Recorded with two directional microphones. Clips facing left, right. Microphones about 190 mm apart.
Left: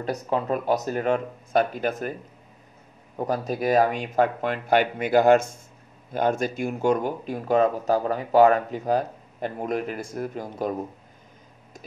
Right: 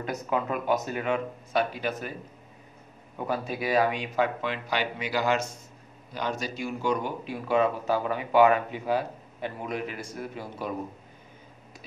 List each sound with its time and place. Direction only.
0.0 s speech: 35° left (ahead or behind)
3.2 s speech: 40° left (ahead or behind)